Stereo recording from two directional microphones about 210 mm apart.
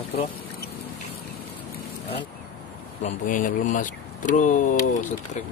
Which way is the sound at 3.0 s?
40° left (ahead or behind).